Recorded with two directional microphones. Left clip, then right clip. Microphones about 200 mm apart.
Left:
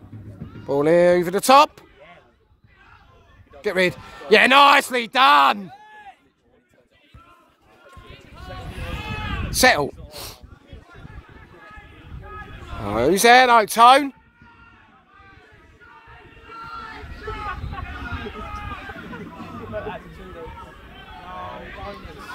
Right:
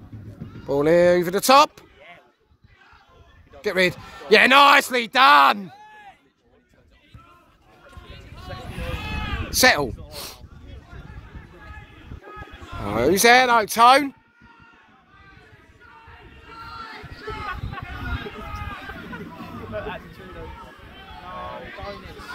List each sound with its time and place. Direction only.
0.5 s speech: 5° left (ahead or behind)
3.6 s a man's voice: 5° left (ahead or behind)
5.7 s a sound: 40° left (ahead or behind)
8.1 s a sound: 30° right (ahead or behind)
9.2 s a sound: 5° left (ahead or behind)
12.8 s a man's voice: 5° left (ahead or behind)
13.5 s speech: 15° left (ahead or behind)
13.7 s a man's voice: centre (ahead or behind)
16.4 s music: 15° right (ahead or behind)
18.1 s run: 15° right (ahead or behind)
19.7 s hubbub: 30° right (ahead or behind)